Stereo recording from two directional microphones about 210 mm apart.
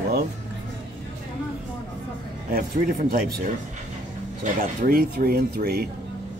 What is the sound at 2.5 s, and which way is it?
Speech, 45° right (ahead or behind).